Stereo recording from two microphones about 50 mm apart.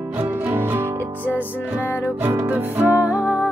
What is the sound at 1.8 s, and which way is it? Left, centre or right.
Speech, left.